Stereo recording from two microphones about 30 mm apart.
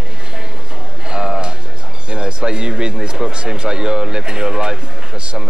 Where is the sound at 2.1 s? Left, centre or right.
Right.